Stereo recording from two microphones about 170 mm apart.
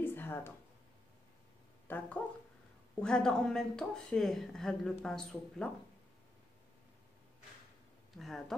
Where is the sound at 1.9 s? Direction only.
10° left (ahead or behind).